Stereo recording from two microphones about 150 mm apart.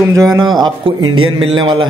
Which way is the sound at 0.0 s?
20° right (ahead or behind).